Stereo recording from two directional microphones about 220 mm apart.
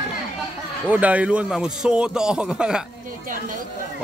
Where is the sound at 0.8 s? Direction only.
5° right (ahead or behind).